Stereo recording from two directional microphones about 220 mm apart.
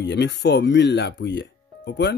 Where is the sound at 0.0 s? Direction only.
55° left (ahead or behind).